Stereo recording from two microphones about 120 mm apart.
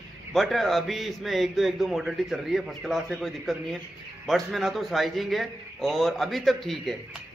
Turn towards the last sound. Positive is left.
turn(degrees=0)  # may be behind; listen again after turning